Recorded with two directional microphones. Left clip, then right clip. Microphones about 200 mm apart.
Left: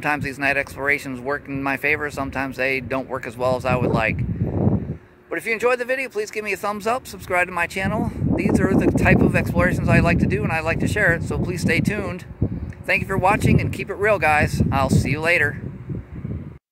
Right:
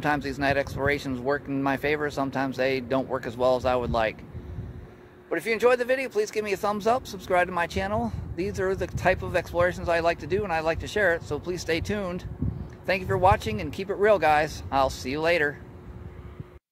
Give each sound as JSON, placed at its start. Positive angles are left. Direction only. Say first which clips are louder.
{"t": 0.0, "sound": "speech", "louder": "left 4 dB", "side_deg": 15}
{"t": 5.3, "sound": "speech", "louder": "left 2 dB", "side_deg": 15}